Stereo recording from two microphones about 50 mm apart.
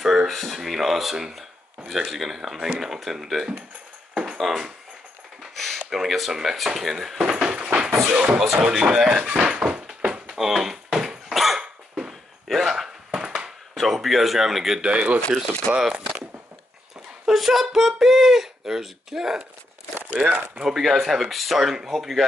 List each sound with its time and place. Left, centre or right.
0.0 s speech: centre
4.1 s a sound: centre
4.4 s speech: centre
7.2 s a sound: centre
8.1 s speech: right
10.3 s a sound: centre
13.7 s speech: centre
14.8 s speech: right
15.7 s speech: centre
17.3 s speech: centre
20.0 s speech: right
20.6 s speech: centre